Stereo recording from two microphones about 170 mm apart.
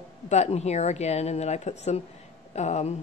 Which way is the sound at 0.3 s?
40° left (ahead or behind).